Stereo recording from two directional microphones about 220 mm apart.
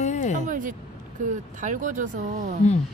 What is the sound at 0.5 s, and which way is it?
Vehicle, 35° right (ahead or behind).